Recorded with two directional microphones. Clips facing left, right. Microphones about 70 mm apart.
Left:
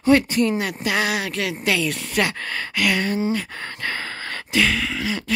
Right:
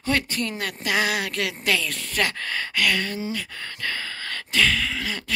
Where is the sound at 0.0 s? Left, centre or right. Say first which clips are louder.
Left 9 dB; centre.